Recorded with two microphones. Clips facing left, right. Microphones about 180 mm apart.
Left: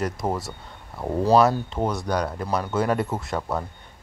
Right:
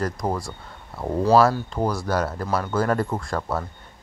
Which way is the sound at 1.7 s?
Centre (ahead or behind).